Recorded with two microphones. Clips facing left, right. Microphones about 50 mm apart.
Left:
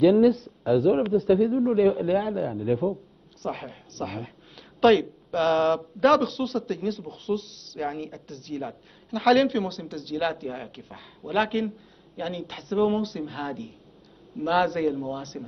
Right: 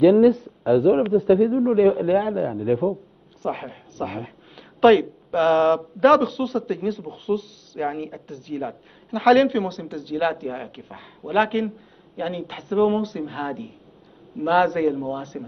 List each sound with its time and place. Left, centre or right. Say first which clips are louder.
0.0 s speech: right 4 dB; centre